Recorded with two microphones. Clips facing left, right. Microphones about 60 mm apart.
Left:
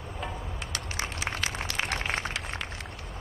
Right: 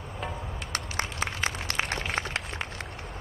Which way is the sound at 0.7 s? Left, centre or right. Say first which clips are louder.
Right 4 dB; right.